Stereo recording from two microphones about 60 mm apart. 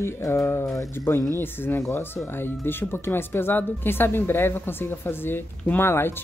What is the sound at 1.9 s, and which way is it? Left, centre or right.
Speech, left.